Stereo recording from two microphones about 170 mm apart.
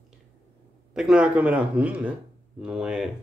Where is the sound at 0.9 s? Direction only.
5° right (ahead or behind).